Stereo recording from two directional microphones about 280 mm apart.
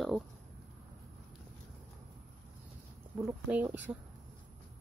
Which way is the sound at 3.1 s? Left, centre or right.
Centre.